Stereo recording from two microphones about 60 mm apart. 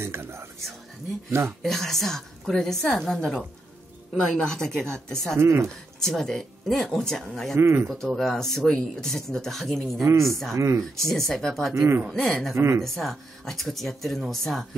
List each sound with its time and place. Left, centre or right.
0.0 s speech: right
1.6 s a woman's voice: centre
4.4 s a woman's voice: centre
5.4 s speech: right
5.9 s a woman's voice: centre
7.5 s speech: right
7.9 s a woman's voice: centre
10.0 s speech: right
11.0 s speech: centre
11.7 s speech: right
12.1 s speech: centre
12.5 s speech: right
12.8 s speech: centre